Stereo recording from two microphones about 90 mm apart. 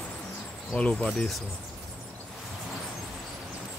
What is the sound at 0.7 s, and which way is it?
Speech, 10° left (ahead or behind).